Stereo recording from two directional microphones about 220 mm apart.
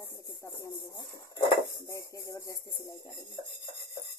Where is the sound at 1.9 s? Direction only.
15° left (ahead or behind).